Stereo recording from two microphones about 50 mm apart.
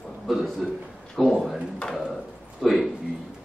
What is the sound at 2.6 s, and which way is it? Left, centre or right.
Speech, centre.